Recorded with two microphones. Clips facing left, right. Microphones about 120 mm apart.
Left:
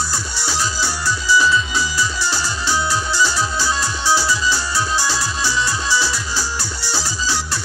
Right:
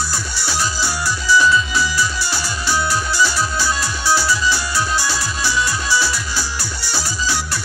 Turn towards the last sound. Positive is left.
turn(degrees=15)  # may be behind; listen again after turning